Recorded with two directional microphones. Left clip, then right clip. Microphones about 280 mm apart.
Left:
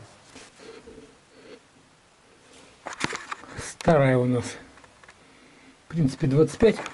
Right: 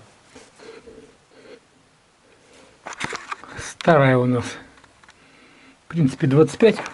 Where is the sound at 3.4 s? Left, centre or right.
Centre.